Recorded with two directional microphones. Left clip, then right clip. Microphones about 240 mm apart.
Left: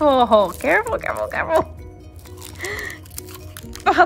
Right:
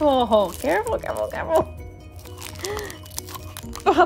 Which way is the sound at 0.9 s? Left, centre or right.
Centre.